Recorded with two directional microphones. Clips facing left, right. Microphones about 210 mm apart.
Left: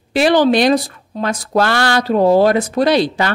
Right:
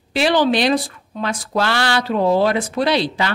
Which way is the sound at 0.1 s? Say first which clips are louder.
Left 4 dB; 45° left (ahead or behind).